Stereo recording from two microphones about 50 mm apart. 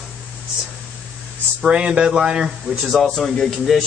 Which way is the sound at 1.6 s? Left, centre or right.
Right.